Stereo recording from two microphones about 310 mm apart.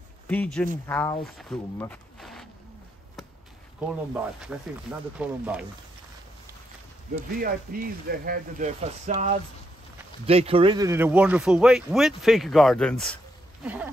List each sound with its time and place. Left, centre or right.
0.3 s speech: centre
3.9 s speech: centre
7.3 s speech: right; by 13.1 s centre